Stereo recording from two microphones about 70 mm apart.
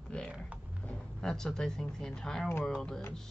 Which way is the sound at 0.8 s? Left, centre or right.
Centre.